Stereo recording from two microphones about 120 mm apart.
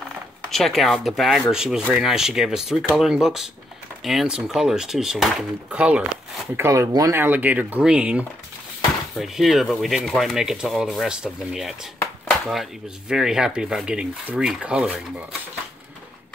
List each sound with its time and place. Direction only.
0.5 s speech: centre (ahead or behind)
6.5 s speech: 20° right (ahead or behind)